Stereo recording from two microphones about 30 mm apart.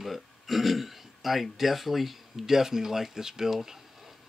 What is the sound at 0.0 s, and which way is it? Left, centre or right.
Speech, centre.